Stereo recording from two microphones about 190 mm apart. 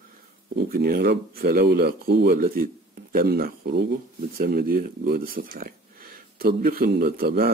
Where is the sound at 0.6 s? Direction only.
55° right (ahead or behind).